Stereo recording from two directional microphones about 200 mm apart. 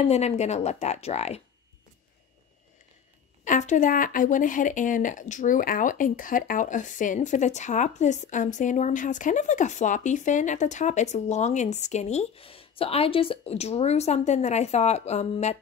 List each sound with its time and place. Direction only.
0.1 s speech: 35° left (ahead or behind)
3.4 s speech: 40° left (ahead or behind)